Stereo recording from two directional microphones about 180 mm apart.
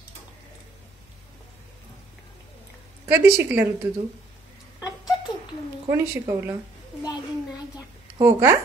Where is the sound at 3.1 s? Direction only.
15° right (ahead or behind).